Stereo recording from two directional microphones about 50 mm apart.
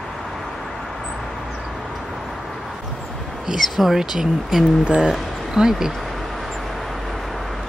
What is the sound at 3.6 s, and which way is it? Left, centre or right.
Speech, centre.